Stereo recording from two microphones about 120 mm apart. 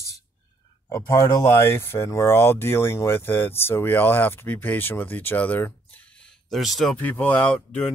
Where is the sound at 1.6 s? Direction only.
20° left (ahead or behind).